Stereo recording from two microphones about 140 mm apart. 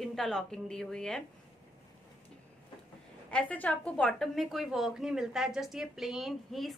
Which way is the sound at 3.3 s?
10° left (ahead or behind).